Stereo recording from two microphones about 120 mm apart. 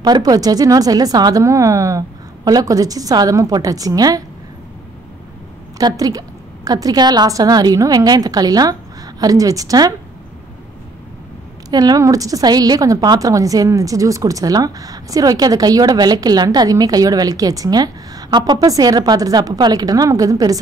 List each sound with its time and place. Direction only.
0.0 s a woman's voice: 35° right (ahead or behind)
5.8 s a woman's voice: 30° right (ahead or behind)
11.7 s a woman's voice: 35° right (ahead or behind)